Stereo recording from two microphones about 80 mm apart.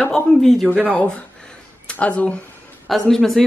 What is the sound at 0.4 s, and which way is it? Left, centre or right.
Speech, centre.